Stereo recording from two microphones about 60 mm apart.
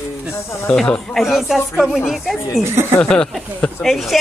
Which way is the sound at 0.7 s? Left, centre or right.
Centre.